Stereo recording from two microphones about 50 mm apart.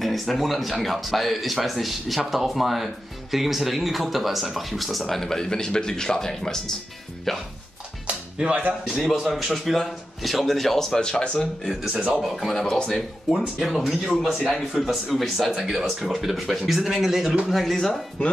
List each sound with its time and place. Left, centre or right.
0.0 s speech: centre
8.1 s music: right
9.1 s speech: centre
12.1 s speech: centre
12.5 s speech: centre
13.3 s speech: centre